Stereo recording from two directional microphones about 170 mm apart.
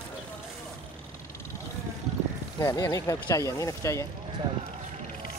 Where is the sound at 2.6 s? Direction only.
20° left (ahead or behind).